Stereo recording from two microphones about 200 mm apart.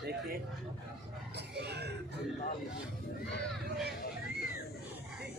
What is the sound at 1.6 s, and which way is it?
Cough, 55° right (ahead or behind).